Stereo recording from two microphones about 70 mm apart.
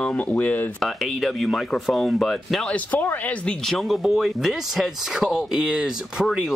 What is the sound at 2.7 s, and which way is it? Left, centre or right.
Speech, left.